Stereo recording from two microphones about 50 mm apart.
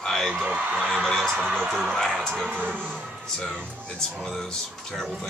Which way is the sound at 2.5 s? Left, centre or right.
Right.